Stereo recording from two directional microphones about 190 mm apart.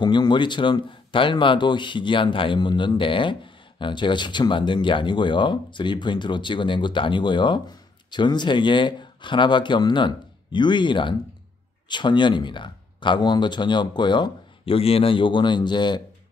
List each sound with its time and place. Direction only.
0.0 s speech: 25° left (ahead or behind)